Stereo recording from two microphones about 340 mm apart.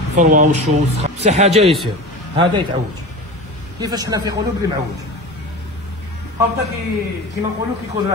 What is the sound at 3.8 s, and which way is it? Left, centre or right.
Speech, centre.